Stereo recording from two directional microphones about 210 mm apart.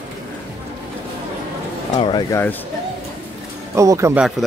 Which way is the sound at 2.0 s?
20° left (ahead or behind).